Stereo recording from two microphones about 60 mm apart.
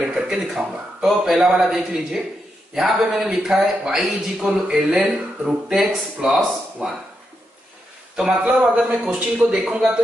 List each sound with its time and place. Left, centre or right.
0.0 s speech: centre
8.3 s speech: right